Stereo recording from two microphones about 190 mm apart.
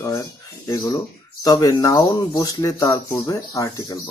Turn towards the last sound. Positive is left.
turn(degrees=20)  # may be behind; listen again after turning